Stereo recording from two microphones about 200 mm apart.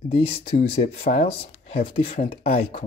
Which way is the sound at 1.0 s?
50° left (ahead or behind).